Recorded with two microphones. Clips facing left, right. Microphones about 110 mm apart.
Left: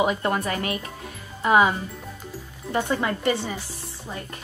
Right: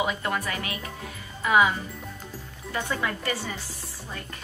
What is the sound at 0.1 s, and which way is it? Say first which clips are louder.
Speech: left 4 dB; 30° left (ahead or behind).